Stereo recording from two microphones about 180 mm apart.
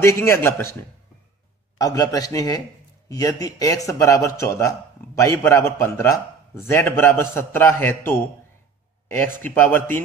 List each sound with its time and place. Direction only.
0.0 s a man's voice: 15° left (ahead or behind)
1.8 s a man's voice: 20° left (ahead or behind)